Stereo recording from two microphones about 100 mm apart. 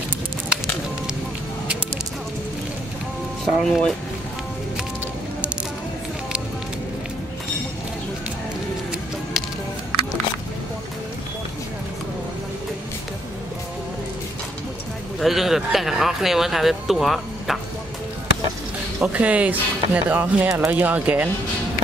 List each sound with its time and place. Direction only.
3.4 s speech: 5° left (ahead or behind)
15.1 s speech: centre (ahead or behind)
18.9 s speech: 15° right (ahead or behind)